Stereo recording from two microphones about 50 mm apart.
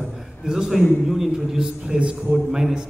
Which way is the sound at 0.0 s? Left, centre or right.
Centre.